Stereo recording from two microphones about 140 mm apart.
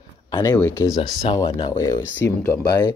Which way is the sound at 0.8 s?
25° left (ahead or behind).